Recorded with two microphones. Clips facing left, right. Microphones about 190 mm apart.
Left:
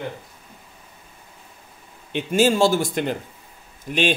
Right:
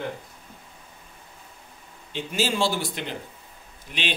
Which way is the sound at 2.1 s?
55° left (ahead or behind).